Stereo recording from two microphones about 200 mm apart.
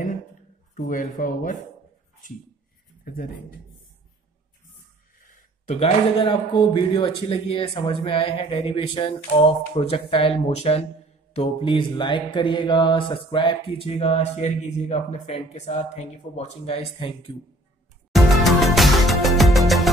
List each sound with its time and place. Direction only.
0.7 s speech: 40° left (ahead or behind)
5.7 s mantra: 30° left (ahead or behind)
18.1 s music: centre (ahead or behind)